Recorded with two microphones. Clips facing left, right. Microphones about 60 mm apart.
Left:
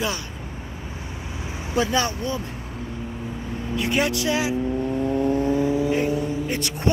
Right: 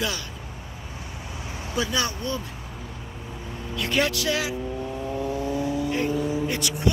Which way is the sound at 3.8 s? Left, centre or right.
Left.